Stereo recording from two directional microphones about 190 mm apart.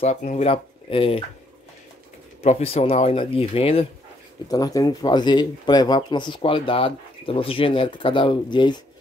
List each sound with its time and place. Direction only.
0.0 s speech: 35° left (ahead or behind)
2.4 s speech: 35° left (ahead or behind)
4.5 s speech: 20° left (ahead or behind)